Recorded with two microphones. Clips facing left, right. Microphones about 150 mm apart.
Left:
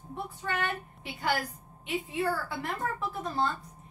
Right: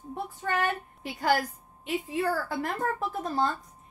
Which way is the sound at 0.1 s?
45° right (ahead or behind).